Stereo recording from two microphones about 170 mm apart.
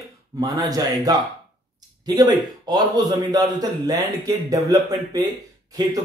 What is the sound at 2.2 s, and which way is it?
A man's voice, 25° right (ahead or behind).